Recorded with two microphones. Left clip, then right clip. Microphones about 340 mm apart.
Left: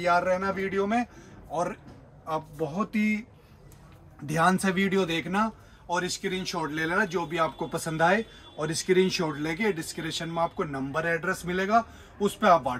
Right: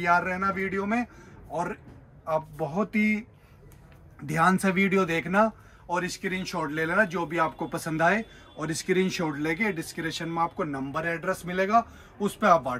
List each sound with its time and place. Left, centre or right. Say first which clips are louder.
0.0 s speech: even; centre
4.3 s speech: right 1 dB; centre